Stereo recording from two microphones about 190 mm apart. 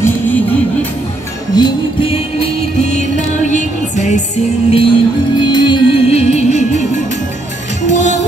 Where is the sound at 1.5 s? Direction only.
25° left (ahead or behind).